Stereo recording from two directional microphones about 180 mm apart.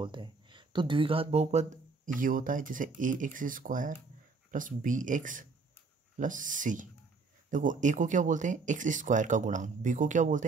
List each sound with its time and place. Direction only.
0.0 s speech: 25° right (ahead or behind); by 10.4 s 45° right (ahead or behind)